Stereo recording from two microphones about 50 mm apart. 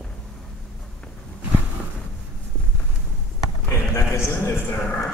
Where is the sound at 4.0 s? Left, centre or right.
Left.